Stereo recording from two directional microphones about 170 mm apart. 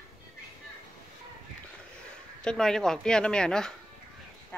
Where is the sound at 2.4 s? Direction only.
5° left (ahead or behind).